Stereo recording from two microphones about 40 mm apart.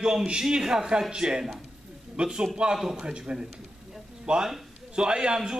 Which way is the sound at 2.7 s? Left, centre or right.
Centre.